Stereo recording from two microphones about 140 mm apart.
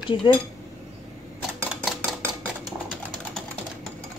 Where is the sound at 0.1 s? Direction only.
40° left (ahead or behind).